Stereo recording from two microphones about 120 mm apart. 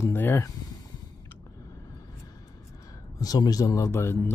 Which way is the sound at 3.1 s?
30° left (ahead or behind).